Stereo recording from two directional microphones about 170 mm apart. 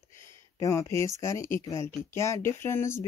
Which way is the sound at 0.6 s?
20° left (ahead or behind).